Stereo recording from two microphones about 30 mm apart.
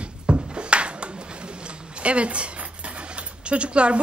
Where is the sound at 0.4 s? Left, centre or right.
Right.